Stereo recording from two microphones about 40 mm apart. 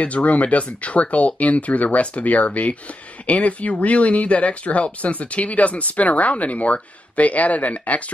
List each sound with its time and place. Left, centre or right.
0.0 s speech: left